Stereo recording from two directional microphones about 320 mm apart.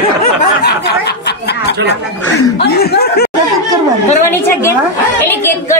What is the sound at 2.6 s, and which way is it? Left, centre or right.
Speech, left.